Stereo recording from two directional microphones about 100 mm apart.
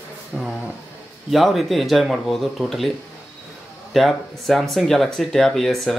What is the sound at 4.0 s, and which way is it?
Speech, centre (ahead or behind).